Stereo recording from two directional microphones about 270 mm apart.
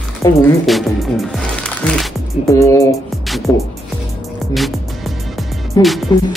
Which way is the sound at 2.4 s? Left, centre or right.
Centre.